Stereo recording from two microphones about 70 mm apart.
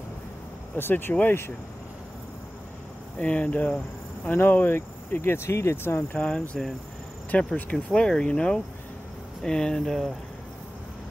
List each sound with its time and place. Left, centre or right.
0.7 s speech: left
3.2 s speech: centre
4.3 s speech: left
5.9 s speech: centre